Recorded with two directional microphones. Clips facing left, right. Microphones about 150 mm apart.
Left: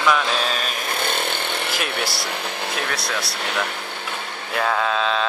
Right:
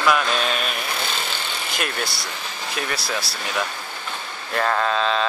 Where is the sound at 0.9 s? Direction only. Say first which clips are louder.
Left 4 dB; 55° left (ahead or behind).